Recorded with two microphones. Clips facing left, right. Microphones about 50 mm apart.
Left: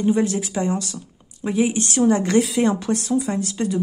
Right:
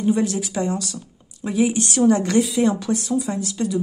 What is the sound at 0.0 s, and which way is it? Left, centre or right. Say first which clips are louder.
Speech: left 1 dB; left.